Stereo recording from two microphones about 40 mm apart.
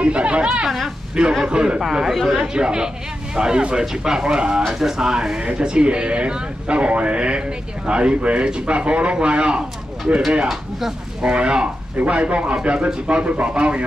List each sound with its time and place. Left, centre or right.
0.0 s speech: right
1.8 s speech: centre; by 4.6 s right
4.6 s speech: centre; by 10.2 s right
11.2 s speech: right